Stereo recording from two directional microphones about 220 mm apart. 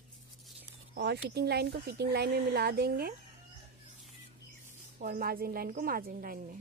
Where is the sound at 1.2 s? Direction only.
50° right (ahead or behind).